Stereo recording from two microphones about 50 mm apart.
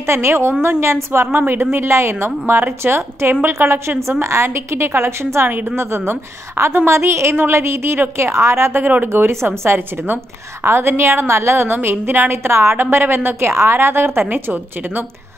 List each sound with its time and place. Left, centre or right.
0.0 s a woman's voice: right
1.2 s a woman's voice: right
8.8 s a woman's voice: right
9.1 s a woman's voice: right
10.6 s a woman's voice: right
13.5 s a woman's voice: right
14.3 s a woman's voice: right